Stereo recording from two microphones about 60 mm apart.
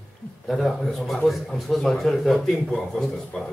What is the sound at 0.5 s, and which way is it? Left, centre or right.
A man's voice, centre.